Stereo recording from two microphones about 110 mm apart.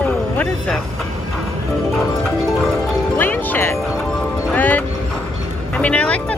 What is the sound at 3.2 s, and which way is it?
Music, 15° left (ahead or behind).